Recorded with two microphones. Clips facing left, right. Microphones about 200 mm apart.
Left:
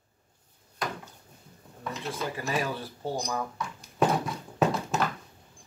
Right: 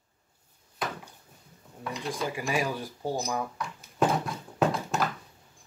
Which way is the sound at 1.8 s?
Centre (ahead or behind).